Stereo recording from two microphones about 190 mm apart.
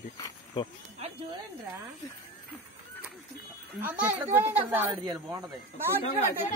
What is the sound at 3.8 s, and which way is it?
A woman's voice, 10° right (ahead or behind).